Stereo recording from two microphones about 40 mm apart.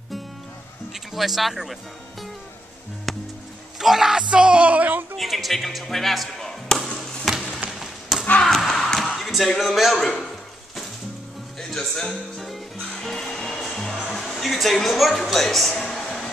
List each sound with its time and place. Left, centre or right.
0.9 s speech: centre
3.1 s music: centre
3.7 s music: centre
4.3 s music: right
5.1 s speech: centre
7.3 s music: centre
7.8 s a sound: centre
8.5 s a sound: centre
9.1 s speech: centre
11.7 s music: centre
12.1 s music: centre
14.2 s music: centre
14.9 s speech: centre
15.7 s a sound: centre